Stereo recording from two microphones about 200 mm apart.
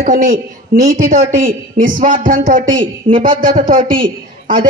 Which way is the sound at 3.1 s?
30° right (ahead or behind).